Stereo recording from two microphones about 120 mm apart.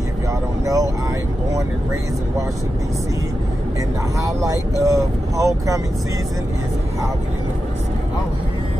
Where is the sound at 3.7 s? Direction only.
25° right (ahead or behind).